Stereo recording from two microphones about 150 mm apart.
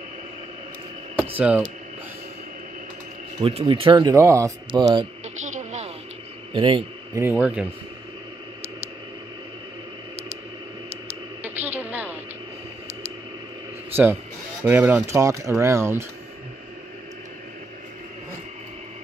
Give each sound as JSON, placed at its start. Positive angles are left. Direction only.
{"t": 1.3, "sound": "speech", "side_deg": -10}
{"t": 3.3, "sound": "speech", "side_deg": -40}
{"t": 4.1, "sound": "speech", "side_deg": -20}
{"t": 4.6, "sound": "speech", "side_deg": -30}
{"t": 5.4, "sound": "a sound", "side_deg": -55}
{"t": 6.5, "sound": "speech", "side_deg": -35}
{"t": 7.2, "sound": "speech", "side_deg": -15}
{"t": 11.4, "sound": "a sound", "side_deg": -10}
{"t": 14.6, "sound": "speech", "side_deg": -10}